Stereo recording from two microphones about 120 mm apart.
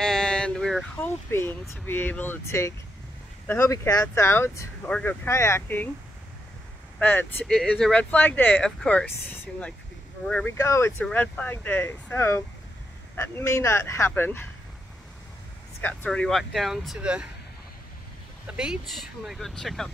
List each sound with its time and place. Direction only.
0.0 s a sound: 5° left (ahead or behind)
1.0 s speech: 20° left (ahead or behind)
7.0 s speech: 15° left (ahead or behind)
7.4 s speech: 5° left (ahead or behind); by 11.1 s 25° left (ahead or behind)
11.1 s speech: 10° left (ahead or behind)
15.8 s speech: 15° left (ahead or behind); by 17.3 s 10° right (ahead or behind)
18.6 s speech: 5° right (ahead or behind)